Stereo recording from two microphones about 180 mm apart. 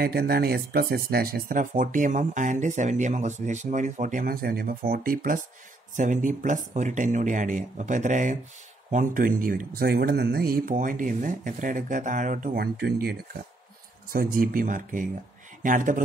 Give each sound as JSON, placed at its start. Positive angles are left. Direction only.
{"t": 0.0, "sound": "speech", "side_deg": -60}